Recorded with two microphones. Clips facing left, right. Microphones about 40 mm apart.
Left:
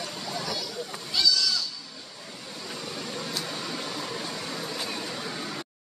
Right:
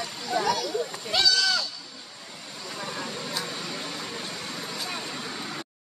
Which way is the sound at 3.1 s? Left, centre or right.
Centre.